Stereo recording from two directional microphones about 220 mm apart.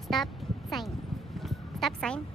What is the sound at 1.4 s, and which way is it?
Music, centre (ahead or behind).